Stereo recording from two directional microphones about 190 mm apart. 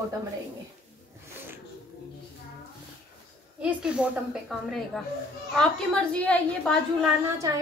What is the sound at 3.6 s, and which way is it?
A woman's voice, 5° right (ahead or behind).